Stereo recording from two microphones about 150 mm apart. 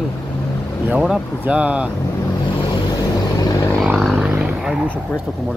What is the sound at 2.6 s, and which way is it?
Vehicle, 30° left (ahead or behind).